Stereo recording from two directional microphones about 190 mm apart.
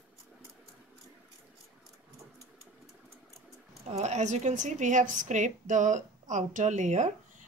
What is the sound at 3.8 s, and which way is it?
A woman's voice, 35° right (ahead or behind).